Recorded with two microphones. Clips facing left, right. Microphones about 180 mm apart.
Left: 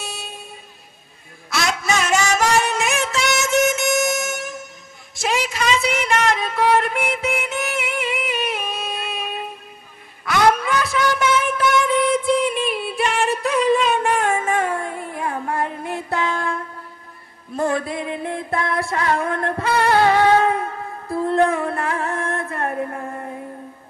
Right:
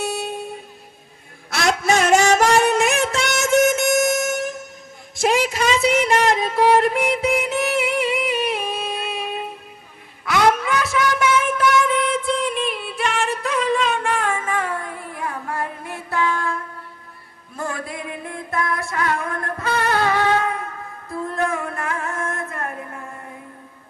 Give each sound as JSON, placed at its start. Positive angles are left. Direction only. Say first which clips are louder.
{"t": 0.0, "sound": "vehicle", "louder": "right 9 dB", "side_deg": -60}
{"t": 1.5, "sound": "music", "louder": "right 3 dB", "side_deg": -55}
{"t": 5.1, "sound": "a sound", "louder": "right 4 dB", "side_deg": -50}
{"t": 10.6, "sound": "music", "louder": "even", "side_deg": 0}
{"t": 17.6, "sound": "music", "louder": "left 7 dB", "side_deg": 25}